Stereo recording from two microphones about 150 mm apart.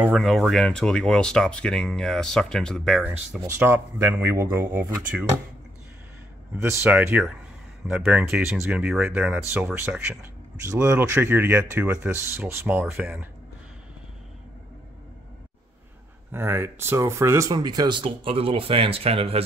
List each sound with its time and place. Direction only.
0.1 s speech: centre (ahead or behind)
3.4 s speech: 15° right (ahead or behind)
6.6 s speech: 15° right (ahead or behind)
16.3 s speech: 15° right (ahead or behind); by 19.4 s 40° right (ahead or behind)